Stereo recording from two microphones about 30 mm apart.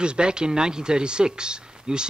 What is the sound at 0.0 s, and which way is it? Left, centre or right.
Speech, right.